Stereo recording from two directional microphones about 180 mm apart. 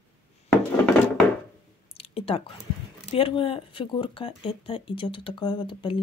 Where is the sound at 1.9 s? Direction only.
30° left (ahead or behind).